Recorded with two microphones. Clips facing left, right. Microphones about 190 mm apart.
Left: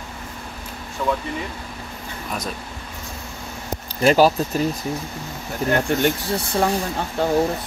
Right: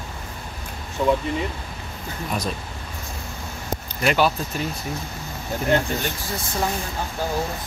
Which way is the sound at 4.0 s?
35° left (ahead or behind).